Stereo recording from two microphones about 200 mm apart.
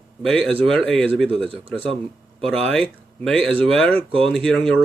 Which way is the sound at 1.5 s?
25° right (ahead or behind).